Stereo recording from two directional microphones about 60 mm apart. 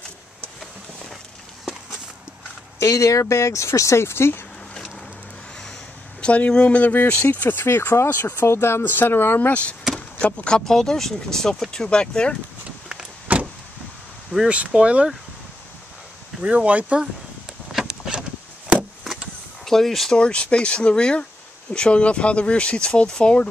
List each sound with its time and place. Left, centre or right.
2.8 s speech: left
6.2 s speech: left
9.9 s vehicle: centre
10.7 s speech: centre
13.3 s vehicle: right
14.5 s speech: right
16.3 s speech: right
17.7 s a sound: centre
19.6 s speech: centre
20.2 s speech: centre